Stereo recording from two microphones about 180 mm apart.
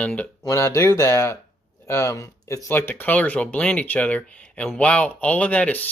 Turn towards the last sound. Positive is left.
turn(degrees=10)  # may be behind; listen again after turning